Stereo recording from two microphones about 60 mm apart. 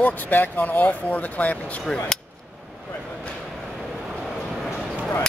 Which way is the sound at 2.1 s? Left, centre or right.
Centre.